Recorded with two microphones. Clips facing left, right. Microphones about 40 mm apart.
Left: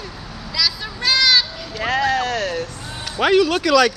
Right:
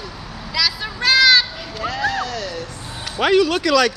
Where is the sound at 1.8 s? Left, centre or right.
Left.